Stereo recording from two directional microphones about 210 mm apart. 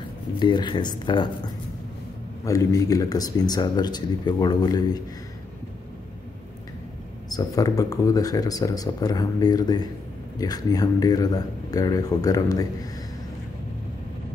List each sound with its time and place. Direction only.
0.4 s speech: 20° left (ahead or behind)
2.4 s speech: 15° left (ahead or behind)
7.2 s speech: 20° left (ahead or behind)